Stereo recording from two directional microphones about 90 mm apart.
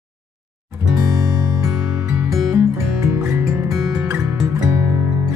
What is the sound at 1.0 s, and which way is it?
Music, 40° right (ahead or behind).